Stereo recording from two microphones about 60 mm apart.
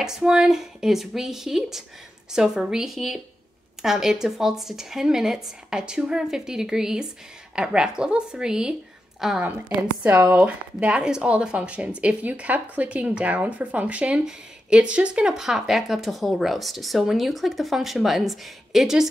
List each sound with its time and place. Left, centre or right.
0.0 s speech: centre
9.4 s speech: right; by 19.0 s centre